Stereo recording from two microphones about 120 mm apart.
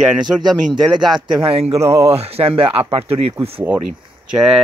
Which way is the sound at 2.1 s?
55° right (ahead or behind).